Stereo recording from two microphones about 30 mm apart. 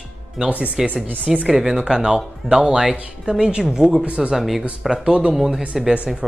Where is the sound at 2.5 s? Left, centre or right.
Right.